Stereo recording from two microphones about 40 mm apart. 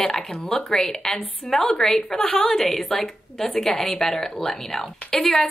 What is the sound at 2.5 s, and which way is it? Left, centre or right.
A woman's voice, centre.